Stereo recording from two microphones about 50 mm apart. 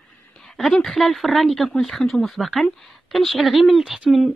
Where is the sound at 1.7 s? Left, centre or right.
Centre.